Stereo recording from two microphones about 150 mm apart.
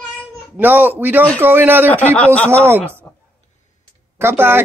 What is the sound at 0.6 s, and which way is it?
A man's voice, 10° right (ahead or behind).